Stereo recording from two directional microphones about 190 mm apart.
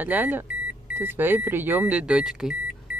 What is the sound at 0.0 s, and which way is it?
Speech, 10° right (ahead or behind).